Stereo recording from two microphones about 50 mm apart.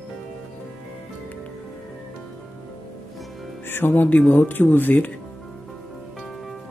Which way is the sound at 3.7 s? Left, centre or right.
Left.